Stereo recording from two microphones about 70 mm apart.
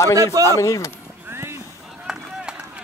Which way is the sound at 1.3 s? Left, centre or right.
Right.